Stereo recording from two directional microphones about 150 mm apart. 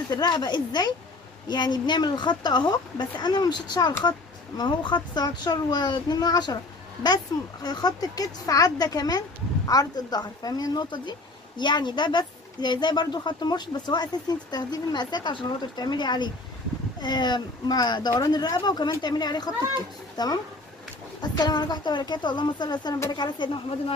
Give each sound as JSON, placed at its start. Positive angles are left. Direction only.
{"t": 0.1, "sound": "speech", "side_deg": 30}